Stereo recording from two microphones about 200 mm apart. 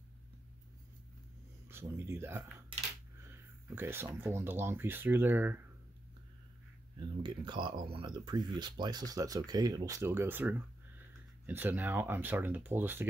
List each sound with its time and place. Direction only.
1.7 s speech: 10° right (ahead or behind)
3.7 s speech: 10° right (ahead or behind)
7.0 s speech: 25° right (ahead or behind)